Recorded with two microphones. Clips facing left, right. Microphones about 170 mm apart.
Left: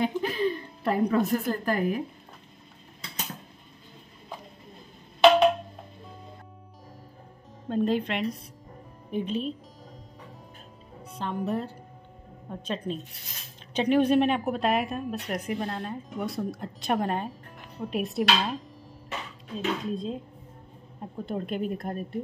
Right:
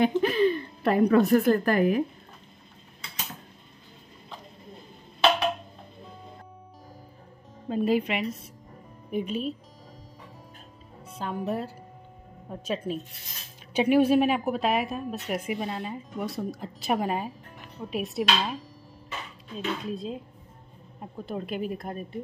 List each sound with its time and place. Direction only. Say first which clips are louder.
0.0 s a woman's voice: right 5 dB; 70° right (ahead or behind)
7.6 s speech: right 1 dB; 5° right (ahead or behind)
11.1 s speech: even; 5° right (ahead or behind)
19.9 s speech: left 1 dB; 5° right (ahead or behind)
21.3 s speech: left 1 dB; 5° right (ahead or behind)